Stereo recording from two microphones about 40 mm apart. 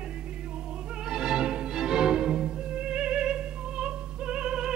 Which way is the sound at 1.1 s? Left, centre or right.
Centre.